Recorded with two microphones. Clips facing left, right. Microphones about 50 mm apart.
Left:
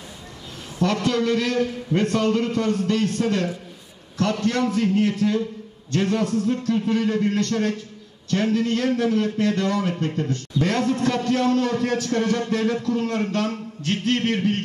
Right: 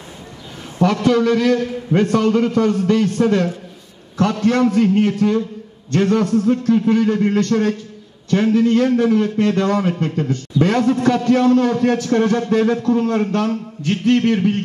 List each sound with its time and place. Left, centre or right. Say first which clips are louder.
0.7 s a man's voice: right 6 dB; right